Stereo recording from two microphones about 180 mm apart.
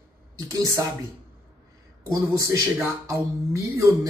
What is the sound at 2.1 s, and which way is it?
Speech, 20° right (ahead or behind).